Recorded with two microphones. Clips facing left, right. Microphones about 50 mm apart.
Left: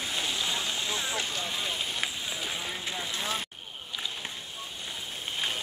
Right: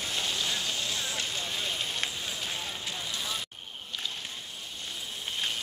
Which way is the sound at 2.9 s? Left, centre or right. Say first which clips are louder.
Left 4 dB; left.